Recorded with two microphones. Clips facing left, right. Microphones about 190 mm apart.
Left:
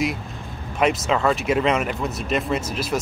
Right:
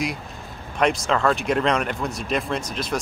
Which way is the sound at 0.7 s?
5° left (ahead or behind).